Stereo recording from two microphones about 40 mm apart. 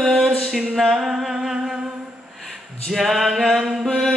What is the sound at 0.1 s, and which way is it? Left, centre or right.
Music, centre.